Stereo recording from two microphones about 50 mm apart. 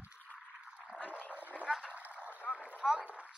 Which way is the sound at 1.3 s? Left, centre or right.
Right.